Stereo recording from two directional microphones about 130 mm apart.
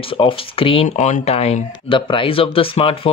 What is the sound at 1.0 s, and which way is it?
Speech, 60° left (ahead or behind).